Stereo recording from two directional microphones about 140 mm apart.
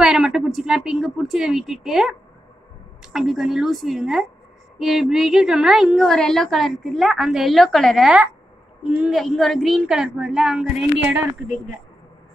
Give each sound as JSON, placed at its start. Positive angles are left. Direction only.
{"t": 0.0, "sound": "a woman's voice", "side_deg": -5}
{"t": 9.2, "sound": "a woman's voice", "side_deg": 5}